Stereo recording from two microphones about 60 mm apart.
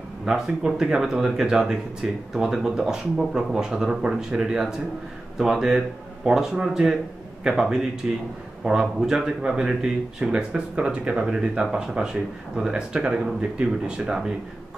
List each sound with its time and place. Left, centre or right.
0.2 s speech: centre